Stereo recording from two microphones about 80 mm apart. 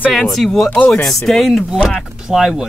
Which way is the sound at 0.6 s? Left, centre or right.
Centre.